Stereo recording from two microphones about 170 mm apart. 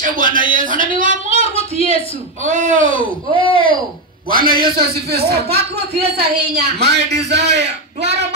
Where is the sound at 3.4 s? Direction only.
30° left (ahead or behind).